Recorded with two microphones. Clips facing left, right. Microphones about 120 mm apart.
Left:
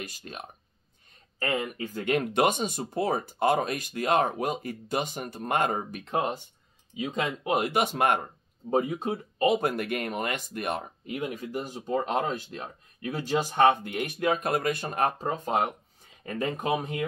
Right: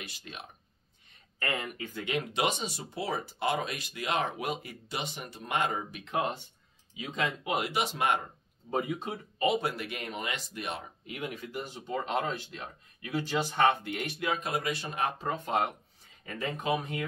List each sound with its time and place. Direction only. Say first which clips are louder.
0.0 s speech: left 5 dB; 45° left (ahead or behind)
7.4 s speech: left 8 dB; 45° left (ahead or behind)
11.1 s speech: left 5 dB; 35° left (ahead or behind)
13.6 s speech: left 5 dB; 15° left (ahead or behind)
14.0 s speech: left 7 dB; 45° left (ahead or behind)